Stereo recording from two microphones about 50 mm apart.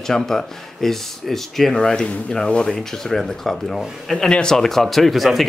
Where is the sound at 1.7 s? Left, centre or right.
Centre.